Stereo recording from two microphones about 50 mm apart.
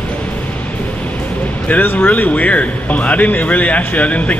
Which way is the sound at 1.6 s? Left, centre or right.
Left.